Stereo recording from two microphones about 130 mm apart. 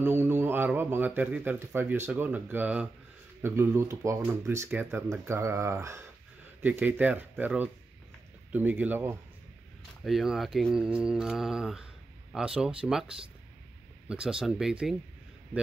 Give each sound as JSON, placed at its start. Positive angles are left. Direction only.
{"t": 0.0, "sound": "speech", "side_deg": -15}
{"t": 10.0, "sound": "speech", "side_deg": 0}